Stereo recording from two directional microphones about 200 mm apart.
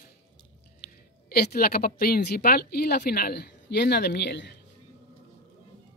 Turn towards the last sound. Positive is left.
turn(degrees=55)  # may be behind; listen again after turning